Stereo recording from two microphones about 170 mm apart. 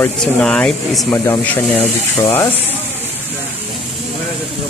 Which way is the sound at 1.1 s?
15° left (ahead or behind).